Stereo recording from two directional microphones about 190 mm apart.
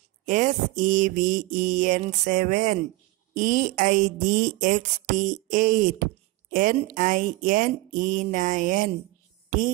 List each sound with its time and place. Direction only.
0.2 s speech: 40° right (ahead or behind)